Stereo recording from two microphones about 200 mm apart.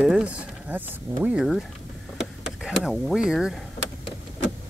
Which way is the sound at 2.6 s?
Centre (ahead or behind).